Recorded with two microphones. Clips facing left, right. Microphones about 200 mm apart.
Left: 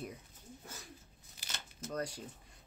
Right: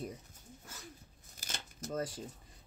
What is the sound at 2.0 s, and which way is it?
Speech, centre (ahead or behind).